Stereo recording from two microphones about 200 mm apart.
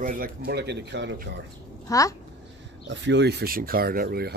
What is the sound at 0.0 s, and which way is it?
Speech, 45° right (ahead or behind).